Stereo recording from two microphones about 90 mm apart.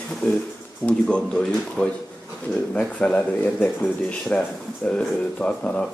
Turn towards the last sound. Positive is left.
turn(degrees=10)  # may be behind; listen again after turning